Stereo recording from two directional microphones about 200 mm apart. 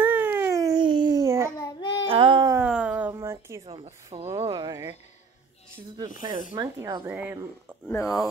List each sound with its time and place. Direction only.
0.0 s babbling: 10° right (ahead or behind)
1.6 s child singing: 20° left (ahead or behind)
2.0 s a sound: 25° right (ahead or behind)
2.6 s a sound: 5° right (ahead or behind)
3.6 s speech: 30° right (ahead or behind)
6.5 s speech: 20° right (ahead or behind)
7.8 s speech: 10° left (ahead or behind)